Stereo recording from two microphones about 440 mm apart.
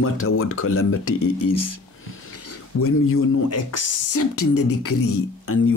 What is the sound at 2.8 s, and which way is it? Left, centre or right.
Speech, left.